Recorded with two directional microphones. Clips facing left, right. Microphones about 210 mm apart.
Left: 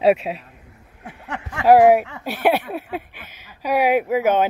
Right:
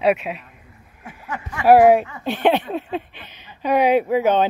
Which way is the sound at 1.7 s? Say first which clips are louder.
Even; 15° left (ahead or behind).